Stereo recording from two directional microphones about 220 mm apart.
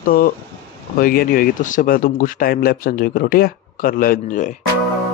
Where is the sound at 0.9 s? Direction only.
40° left (ahead or behind).